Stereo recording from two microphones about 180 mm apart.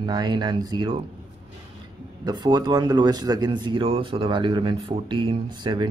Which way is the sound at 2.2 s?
25° right (ahead or behind).